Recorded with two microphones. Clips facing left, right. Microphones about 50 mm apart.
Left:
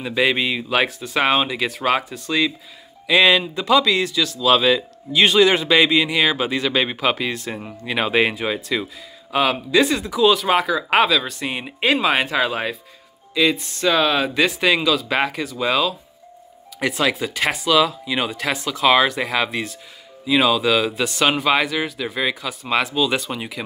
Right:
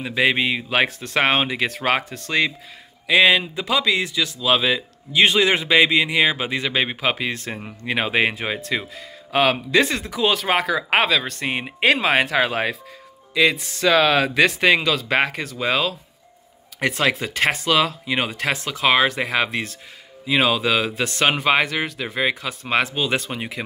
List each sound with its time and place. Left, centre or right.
0.0 s speech: centre
2.0 s speech: right
3.1 s speech: centre
7.2 s speech: right
8.0 s speech: centre
8.4 s speech: right
12.0 s speech: right
14.6 s speech: right
21.6 s speech: right
22.1 s speech: right